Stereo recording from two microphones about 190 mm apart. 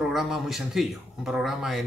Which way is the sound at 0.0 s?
Centre (ahead or behind).